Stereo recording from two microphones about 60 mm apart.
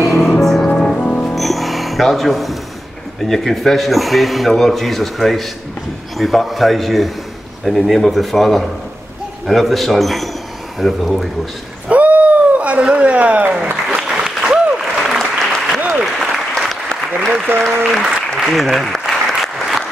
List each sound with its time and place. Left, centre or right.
0.0 s music: centre
0.7 s music: centre
1.3 s music: centre
3.3 s a man's voice: centre
11.9 s a sound: right
12.9 s speech: right
13.8 s applause: centre
17.3 s speech: right
18.0 s applause: centre